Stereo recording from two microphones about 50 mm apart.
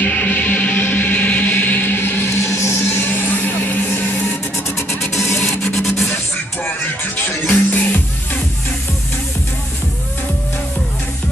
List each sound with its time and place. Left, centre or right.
0.0 s music: left
2.2 s a sound: left
2.9 s music: left
5.1 s music: left
7.5 s music: left